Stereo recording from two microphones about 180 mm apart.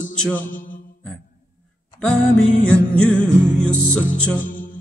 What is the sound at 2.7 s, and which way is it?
Music, 5° left (ahead or behind).